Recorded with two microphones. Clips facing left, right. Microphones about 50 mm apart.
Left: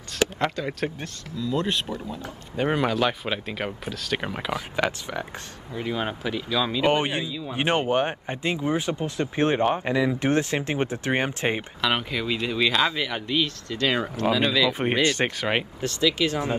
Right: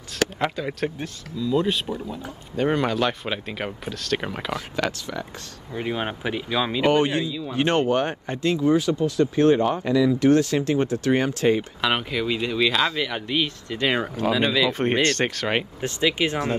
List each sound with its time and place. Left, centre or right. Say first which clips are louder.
0.4 s speech: right 1 dB; centre
2.5 s speech: right 1 dB; centre
4.7 s speech: left 1 dB; centre
5.8 s speech: right 1 dB; centre
6.9 s speech: right 3 dB; centre
11.8 s speech: right 2 dB; centre
13.3 s speech: right 1 dB; centre
14.7 s speech: right 1 dB; centre
15.8 s speech: even; right